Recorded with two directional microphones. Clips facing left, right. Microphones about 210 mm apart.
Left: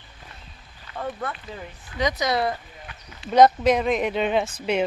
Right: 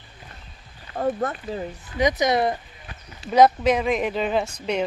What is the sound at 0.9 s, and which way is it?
Speech, 40° right (ahead or behind).